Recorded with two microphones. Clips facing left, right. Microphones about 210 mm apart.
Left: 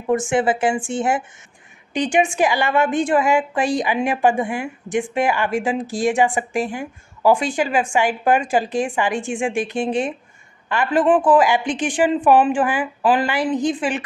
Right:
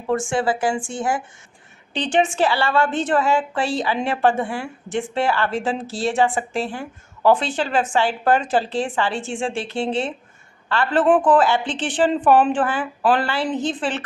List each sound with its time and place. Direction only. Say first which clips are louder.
0.1 s a woman's voice: left 3 dB; 20° left (ahead or behind)